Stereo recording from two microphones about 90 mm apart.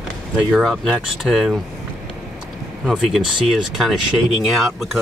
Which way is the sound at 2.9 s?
5° right (ahead or behind).